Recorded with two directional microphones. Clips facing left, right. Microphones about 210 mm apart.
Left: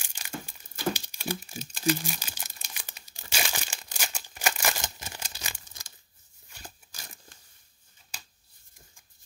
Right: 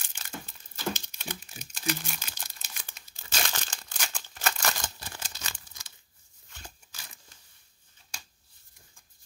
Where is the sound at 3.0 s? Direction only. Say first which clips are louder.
Left 1 dB; 15° left (ahead or behind).